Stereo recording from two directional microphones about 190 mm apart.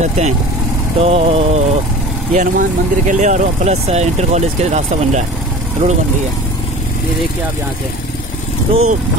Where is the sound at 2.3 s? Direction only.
45° right (ahead or behind).